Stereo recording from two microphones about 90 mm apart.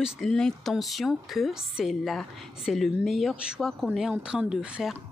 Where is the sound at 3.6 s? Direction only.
Centre (ahead or behind).